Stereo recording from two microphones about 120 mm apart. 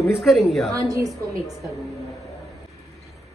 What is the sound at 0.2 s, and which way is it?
Speech, centre (ahead or behind).